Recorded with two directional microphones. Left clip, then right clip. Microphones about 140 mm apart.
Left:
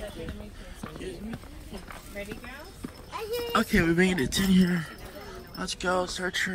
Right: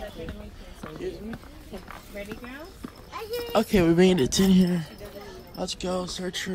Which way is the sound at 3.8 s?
35° right (ahead or behind).